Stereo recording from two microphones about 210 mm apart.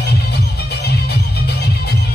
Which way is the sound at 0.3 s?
50° left (ahead or behind).